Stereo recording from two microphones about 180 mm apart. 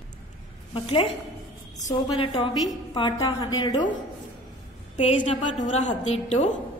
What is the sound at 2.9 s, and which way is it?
Speech, 25° left (ahead or behind).